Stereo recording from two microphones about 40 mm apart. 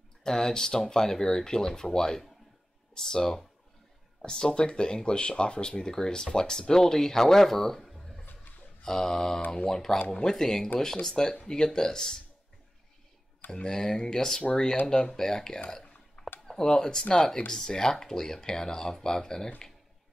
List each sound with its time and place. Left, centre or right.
0.2 s speech: centre
8.8 s speech: centre
13.7 s speech: centre